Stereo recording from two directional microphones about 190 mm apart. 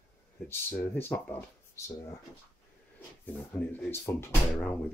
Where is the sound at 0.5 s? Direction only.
10° left (ahead or behind).